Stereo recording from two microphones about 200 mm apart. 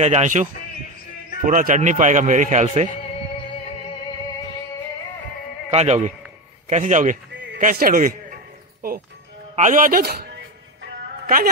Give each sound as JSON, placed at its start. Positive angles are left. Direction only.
{"t": 0.0, "sound": "speech", "side_deg": -35}
{"t": 5.7, "sound": "speech", "side_deg": -35}
{"t": 9.6, "sound": "a man's voice", "side_deg": -40}